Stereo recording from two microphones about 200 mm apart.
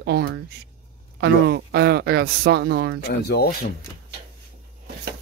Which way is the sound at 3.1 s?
55° left (ahead or behind).